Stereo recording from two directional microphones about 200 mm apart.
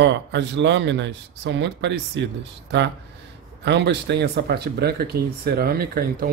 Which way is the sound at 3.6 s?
60° right (ahead or behind).